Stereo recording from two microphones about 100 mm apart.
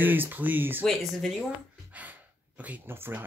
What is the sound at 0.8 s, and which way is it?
Speech, centre (ahead or behind).